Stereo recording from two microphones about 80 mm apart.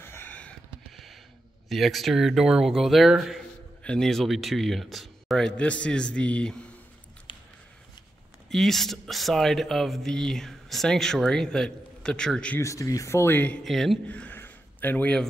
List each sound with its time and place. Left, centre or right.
0.0 s a sound: left
0.9 s a sound: centre
1.7 s speech: centre
3.8 s speech: centre
5.6 s speech: centre
8.5 s speech: centre
12.5 s speech: left
13.7 s speech: centre
14.0 s a sound: centre